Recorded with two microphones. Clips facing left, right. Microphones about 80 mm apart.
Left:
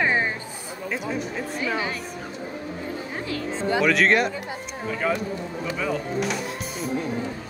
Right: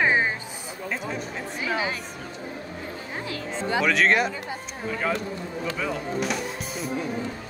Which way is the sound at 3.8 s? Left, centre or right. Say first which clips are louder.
Left 1 dB; centre.